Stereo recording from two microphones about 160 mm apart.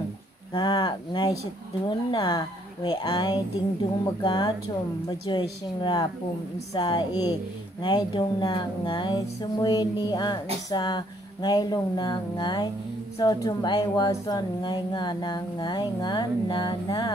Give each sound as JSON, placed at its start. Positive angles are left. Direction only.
{"t": 0.5, "sound": "speech", "side_deg": 25}